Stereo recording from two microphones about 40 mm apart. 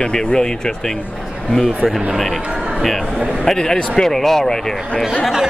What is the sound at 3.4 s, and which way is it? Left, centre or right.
Speech, centre.